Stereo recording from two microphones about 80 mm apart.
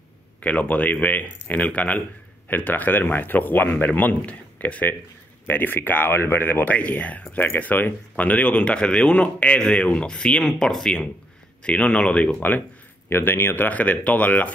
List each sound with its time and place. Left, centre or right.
0.4 s speech: centre